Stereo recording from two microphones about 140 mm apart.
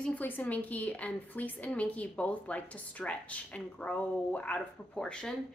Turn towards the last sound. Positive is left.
turn(degrees=5)  # may be behind; listen again after turning